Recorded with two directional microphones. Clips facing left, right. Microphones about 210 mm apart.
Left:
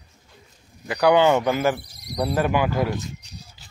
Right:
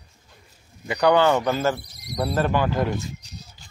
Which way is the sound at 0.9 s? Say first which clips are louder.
Left 1 dB; 10° left (ahead or behind).